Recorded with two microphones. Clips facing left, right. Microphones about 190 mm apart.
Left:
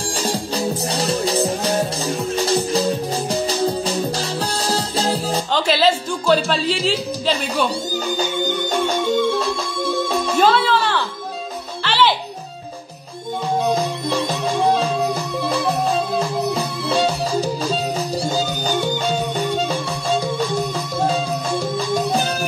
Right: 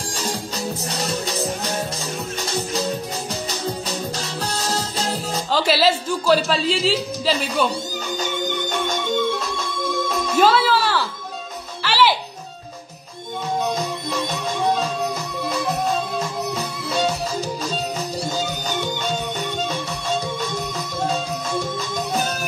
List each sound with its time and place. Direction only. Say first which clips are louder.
0.1 s music: left 5 dB; 30° left (ahead or behind)
5.5 s a sound: even; 5° right (ahead or behind)
8.2 s music: left 1 dB; 30° left (ahead or behind)
10.4 s music: even; 5° right (ahead or behind)
13.6 s music: left 4 dB; 30° left (ahead or behind)